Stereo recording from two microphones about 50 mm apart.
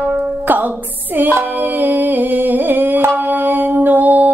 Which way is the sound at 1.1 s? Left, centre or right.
Right.